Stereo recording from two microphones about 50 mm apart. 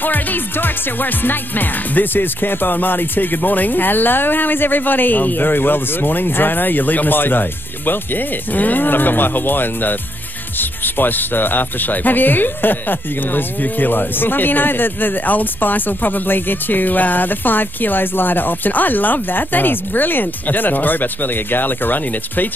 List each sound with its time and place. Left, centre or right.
0.0 s speech: left